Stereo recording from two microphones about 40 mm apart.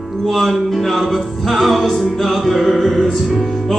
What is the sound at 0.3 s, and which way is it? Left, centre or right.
Music, centre.